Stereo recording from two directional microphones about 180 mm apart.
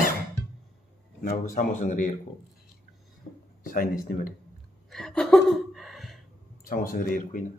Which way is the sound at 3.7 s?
50° left (ahead or behind).